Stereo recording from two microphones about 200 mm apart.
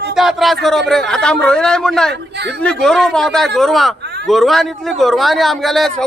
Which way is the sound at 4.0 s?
55° right (ahead or behind).